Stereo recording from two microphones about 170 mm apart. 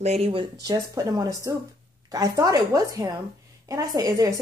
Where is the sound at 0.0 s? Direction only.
40° right (ahead or behind).